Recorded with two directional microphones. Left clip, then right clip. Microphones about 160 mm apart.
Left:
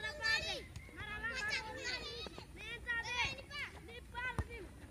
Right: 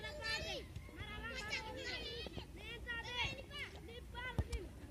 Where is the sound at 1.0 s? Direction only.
20° right (ahead or behind).